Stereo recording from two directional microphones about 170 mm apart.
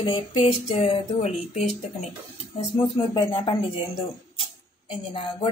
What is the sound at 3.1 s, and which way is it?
Speech, 25° left (ahead or behind).